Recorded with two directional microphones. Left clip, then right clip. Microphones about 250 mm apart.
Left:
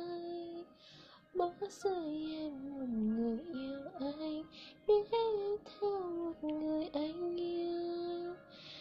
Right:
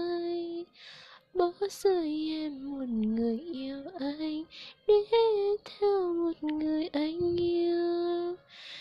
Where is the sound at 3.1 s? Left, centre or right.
Right.